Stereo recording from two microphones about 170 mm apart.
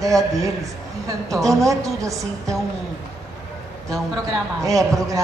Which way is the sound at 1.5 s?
20° right (ahead or behind).